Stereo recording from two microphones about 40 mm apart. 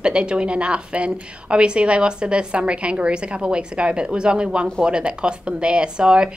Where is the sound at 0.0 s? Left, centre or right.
Right.